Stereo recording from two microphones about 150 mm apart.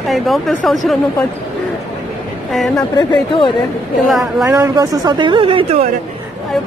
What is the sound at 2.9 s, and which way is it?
Speech, 30° left (ahead or behind).